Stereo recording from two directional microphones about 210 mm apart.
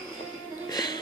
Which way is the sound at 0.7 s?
20° left (ahead or behind).